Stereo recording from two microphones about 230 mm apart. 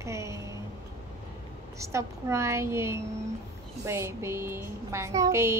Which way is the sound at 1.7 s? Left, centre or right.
Centre.